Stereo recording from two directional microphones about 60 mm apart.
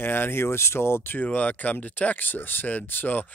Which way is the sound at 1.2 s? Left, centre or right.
Left.